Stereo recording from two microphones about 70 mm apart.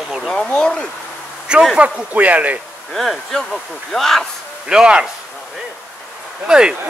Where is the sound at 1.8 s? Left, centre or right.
Right.